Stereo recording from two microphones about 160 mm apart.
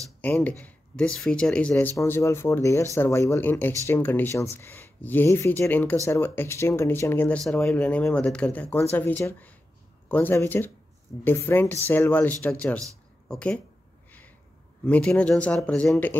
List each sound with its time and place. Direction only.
0.2 s speech: 10° left (ahead or behind)
14.9 s speech: 10° left (ahead or behind)